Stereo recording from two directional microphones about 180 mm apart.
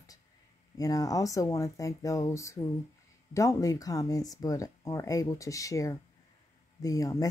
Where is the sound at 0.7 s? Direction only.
20° left (ahead or behind).